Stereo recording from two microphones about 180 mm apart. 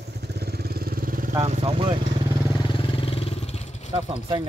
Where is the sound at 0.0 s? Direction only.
65° right (ahead or behind).